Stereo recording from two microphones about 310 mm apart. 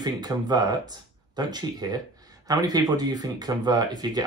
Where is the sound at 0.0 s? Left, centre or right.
Centre.